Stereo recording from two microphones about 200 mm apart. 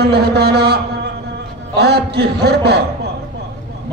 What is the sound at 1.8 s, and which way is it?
A man's voice, 55° right (ahead or behind).